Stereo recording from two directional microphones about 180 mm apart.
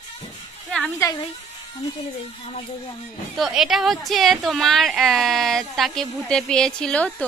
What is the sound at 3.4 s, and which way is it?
A woman's voice, centre (ahead or behind).